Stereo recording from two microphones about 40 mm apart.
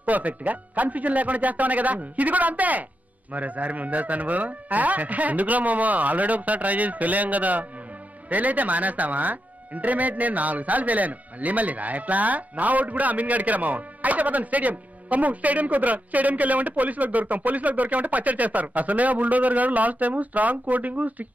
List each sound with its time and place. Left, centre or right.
0.0 s speech: right